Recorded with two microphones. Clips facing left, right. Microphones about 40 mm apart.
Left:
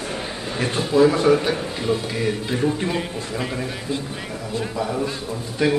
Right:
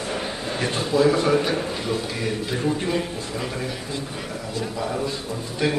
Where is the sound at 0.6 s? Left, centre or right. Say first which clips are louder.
Left 3 dB; centre.